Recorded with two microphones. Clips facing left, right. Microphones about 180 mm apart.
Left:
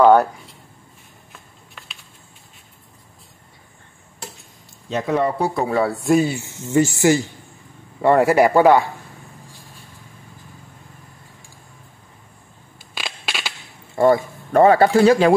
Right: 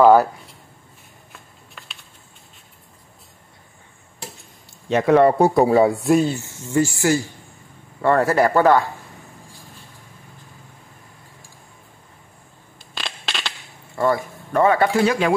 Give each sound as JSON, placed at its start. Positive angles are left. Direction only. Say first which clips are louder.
{"t": 0.0, "sound": "speech", "louder": "even", "side_deg": -5}
{"t": 1.3, "sound": "a sound", "louder": "even", "side_deg": 0}
{"t": 4.8, "sound": "speech", "louder": "right 6 dB", "side_deg": -70}
{"t": 5.4, "sound": "speech", "louder": "right 6 dB", "side_deg": -40}
{"t": 5.7, "sound": "speech", "louder": "right 5 dB", "side_deg": -20}
{"t": 5.9, "sound": "speech", "louder": "even", "side_deg": 0}
{"t": 6.4, "sound": "speech", "louder": "left 2 dB", "side_deg": 20}
{"t": 12.9, "sound": "crushing", "louder": "even", "side_deg": 10}
{"t": 13.9, "sound": "speech", "louder": "left 5 dB", "side_deg": 25}
{"t": 14.5, "sound": "a man's voice", "louder": "left 4 dB", "side_deg": 35}